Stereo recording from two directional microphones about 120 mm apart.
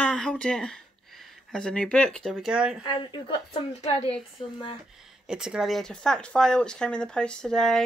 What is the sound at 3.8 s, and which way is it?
Speech, 60° left (ahead or behind).